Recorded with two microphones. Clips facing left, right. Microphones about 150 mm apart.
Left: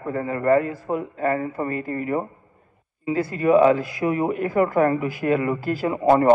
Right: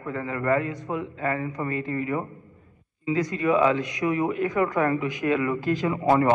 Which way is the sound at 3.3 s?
40° left (ahead or behind).